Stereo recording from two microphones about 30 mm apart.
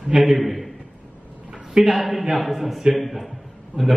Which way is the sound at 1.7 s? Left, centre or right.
Right.